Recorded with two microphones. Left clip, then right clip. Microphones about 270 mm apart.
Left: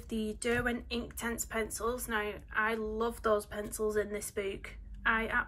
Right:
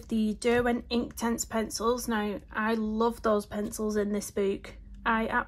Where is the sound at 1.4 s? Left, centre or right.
Centre.